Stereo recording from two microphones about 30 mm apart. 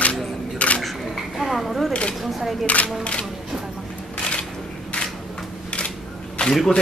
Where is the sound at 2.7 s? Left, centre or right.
Left.